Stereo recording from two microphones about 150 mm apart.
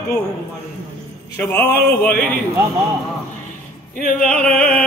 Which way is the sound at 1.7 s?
85° left.